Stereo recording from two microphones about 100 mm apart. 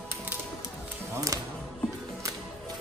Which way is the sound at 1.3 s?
35° right (ahead or behind).